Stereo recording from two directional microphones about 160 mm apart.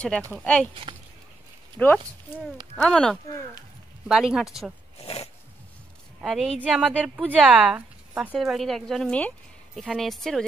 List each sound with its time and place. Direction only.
0.3 s speech: 5° left (ahead or behind)
1.8 s a woman's voice: 5° left (ahead or behind)
5.0 s a sound: 40° left (ahead or behind)
6.2 s a woman's voice: centre (ahead or behind)